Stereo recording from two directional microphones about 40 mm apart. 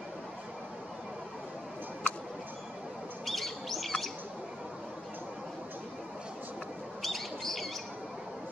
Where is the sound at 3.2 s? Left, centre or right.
Centre.